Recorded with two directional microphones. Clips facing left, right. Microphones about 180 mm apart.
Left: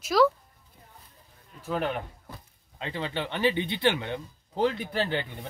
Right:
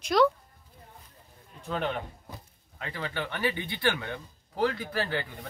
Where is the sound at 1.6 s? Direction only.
5° left (ahead or behind).